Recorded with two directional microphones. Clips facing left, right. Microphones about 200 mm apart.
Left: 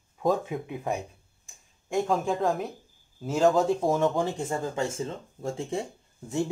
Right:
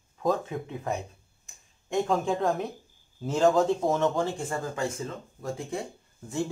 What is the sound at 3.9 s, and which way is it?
Speech, 15° left (ahead or behind).